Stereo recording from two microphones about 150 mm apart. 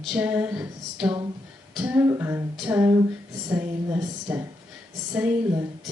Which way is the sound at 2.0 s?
15° right (ahead or behind).